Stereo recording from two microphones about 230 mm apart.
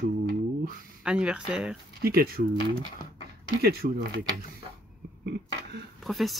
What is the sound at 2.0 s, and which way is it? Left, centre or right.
Speech, right.